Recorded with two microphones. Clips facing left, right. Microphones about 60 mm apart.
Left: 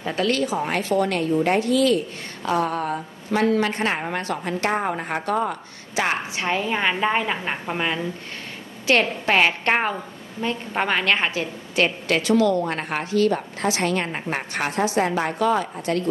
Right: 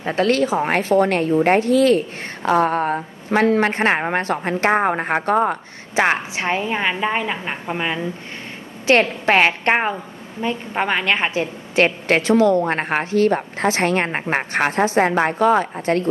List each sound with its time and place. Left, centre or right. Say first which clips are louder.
0.0 s a woman's voice: right 5 dB; right
6.3 s a woman's voice: right 2 dB; right
6.6 s a woman's voice: right 1 dB; centre
7.6 s a woman's voice: right 3 dB; centre
8.8 s a woman's voice: right 4 dB; right
10.4 s a woman's voice: right 2 dB; centre
11.8 s a woman's voice: right 4 dB; right